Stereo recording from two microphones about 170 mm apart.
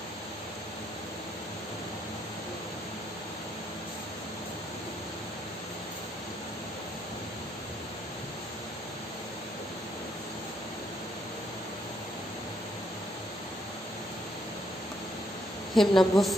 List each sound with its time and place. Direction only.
15.7 s a woman's voice: centre (ahead or behind)